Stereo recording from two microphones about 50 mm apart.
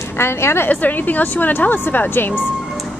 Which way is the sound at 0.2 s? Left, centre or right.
Left.